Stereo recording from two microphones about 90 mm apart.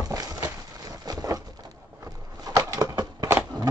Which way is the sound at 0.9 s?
45° right (ahead or behind).